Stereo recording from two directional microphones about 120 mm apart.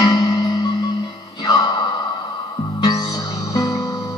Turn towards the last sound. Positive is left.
turn(degrees=30)  # may be behind; listen again after turning